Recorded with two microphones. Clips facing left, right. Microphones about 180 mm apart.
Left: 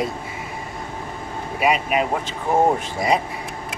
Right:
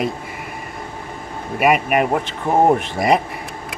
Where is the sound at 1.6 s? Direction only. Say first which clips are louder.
Right 4 dB; 55° right (ahead or behind).